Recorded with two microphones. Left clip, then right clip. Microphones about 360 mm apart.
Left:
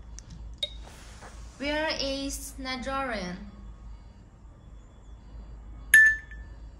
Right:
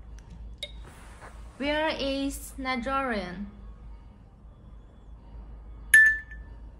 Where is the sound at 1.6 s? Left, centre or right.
Centre.